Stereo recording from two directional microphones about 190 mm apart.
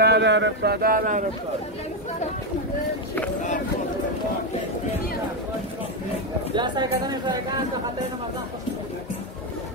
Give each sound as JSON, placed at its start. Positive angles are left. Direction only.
{"t": 0.0, "sound": "speech", "side_deg": -65}
{"t": 6.5, "sound": "speech", "side_deg": -25}